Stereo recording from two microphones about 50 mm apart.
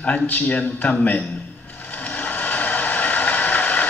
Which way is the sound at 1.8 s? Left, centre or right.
Left.